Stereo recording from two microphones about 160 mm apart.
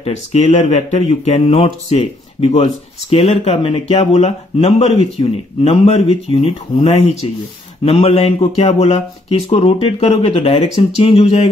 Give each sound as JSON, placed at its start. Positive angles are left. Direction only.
{"t": 0.0, "sound": "speech", "side_deg": 45}